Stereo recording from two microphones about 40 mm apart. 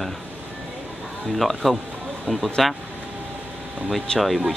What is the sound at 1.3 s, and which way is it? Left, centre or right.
Speech, centre.